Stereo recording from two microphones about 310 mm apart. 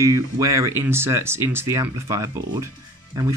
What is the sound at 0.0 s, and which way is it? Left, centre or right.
Speech, centre.